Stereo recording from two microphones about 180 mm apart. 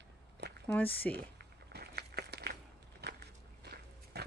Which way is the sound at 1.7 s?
60° right (ahead or behind).